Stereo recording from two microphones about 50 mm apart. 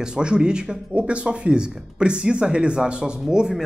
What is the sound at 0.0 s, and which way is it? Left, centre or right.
A man's voice, centre.